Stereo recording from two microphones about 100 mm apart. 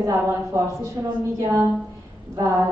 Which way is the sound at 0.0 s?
30° right (ahead or behind).